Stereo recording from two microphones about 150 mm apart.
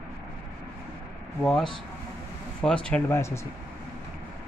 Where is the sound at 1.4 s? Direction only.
5° left (ahead or behind).